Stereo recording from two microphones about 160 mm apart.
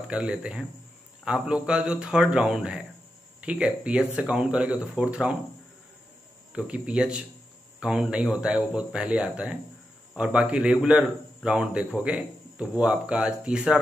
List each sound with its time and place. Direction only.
0.1 s a man's voice: 5° right (ahead or behind)
6.5 s a man's voice: 5° right (ahead or behind)